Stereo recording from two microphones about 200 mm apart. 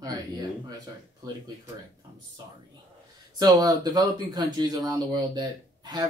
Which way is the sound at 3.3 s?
20° right (ahead or behind).